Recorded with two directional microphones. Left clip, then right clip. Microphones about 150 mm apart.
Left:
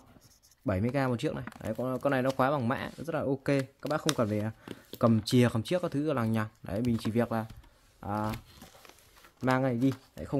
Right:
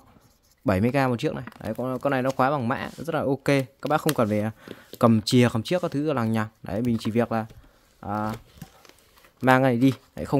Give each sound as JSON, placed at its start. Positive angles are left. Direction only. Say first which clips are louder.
{"t": 0.7, "sound": "speech", "louder": "right 8 dB", "side_deg": -75}
{"t": 0.9, "sound": "speech", "louder": "right 7 dB", "side_deg": -45}
{"t": 9.4, "sound": "speech", "louder": "right 9 dB", "side_deg": -60}